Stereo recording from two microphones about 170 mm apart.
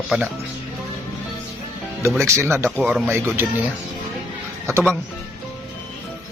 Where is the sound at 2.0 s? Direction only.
15° right (ahead or behind).